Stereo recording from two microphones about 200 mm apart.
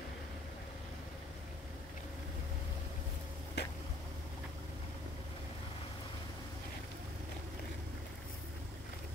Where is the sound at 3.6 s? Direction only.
55° left (ahead or behind).